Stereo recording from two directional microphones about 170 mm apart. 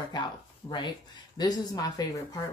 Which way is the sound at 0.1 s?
25° left (ahead or behind).